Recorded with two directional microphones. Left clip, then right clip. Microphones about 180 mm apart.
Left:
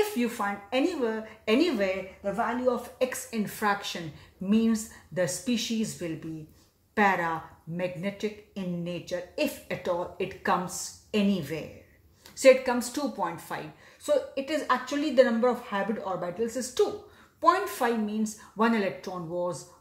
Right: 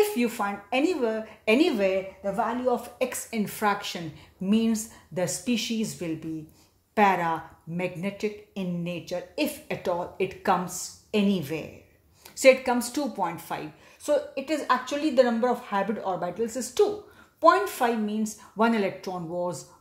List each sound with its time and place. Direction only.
0.2 s speech: 30° right (ahead or behind)